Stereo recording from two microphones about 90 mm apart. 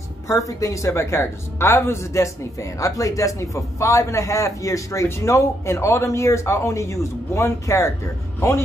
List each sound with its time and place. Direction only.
0.3 s a man's voice: 40° left (ahead or behind)